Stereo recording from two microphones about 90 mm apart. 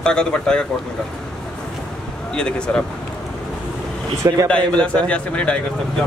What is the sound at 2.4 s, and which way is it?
Speech, 10° left (ahead or behind).